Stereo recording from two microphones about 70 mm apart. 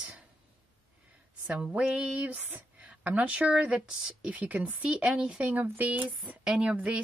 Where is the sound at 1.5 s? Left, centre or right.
Centre.